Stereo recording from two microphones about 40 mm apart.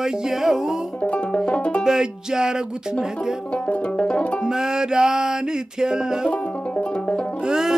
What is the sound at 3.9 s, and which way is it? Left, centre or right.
Music, left.